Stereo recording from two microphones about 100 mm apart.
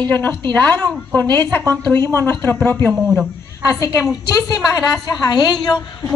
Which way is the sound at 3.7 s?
35° left (ahead or behind).